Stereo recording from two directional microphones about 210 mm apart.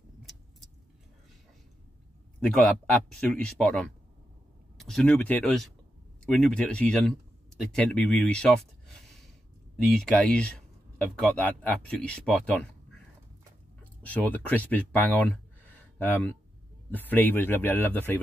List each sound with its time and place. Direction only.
0.2 s vehicle: centre (ahead or behind)
2.4 s speech: 5° left (ahead or behind)
9.9 s speech: 5° left (ahead or behind)
14.0 s speech: 5° left (ahead or behind)